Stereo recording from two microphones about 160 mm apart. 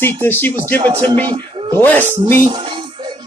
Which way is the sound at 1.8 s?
10° left (ahead or behind).